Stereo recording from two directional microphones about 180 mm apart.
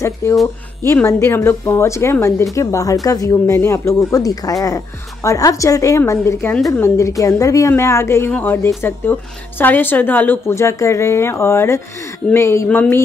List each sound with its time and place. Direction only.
0.0 s a woman's voice: 15° left (ahead or behind)